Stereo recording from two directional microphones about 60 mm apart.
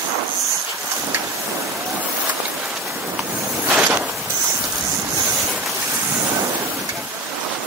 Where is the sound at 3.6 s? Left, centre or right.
Right.